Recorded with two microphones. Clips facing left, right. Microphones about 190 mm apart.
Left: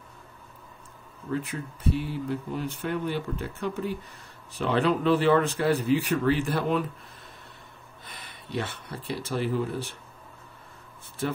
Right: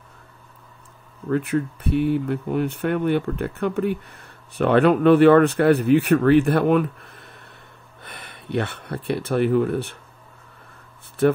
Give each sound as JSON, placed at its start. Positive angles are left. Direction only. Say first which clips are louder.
{"t": 1.3, "sound": "speech", "louder": "right 9 dB", "side_deg": -60}
{"t": 11.2, "sound": "speech", "louder": "right 12 dB", "side_deg": -65}